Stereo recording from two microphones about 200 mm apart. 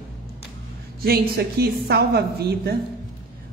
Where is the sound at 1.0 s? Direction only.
50° right (ahead or behind).